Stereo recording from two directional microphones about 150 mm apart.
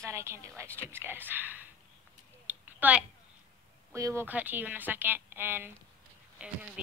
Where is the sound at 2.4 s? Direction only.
10° right (ahead or behind).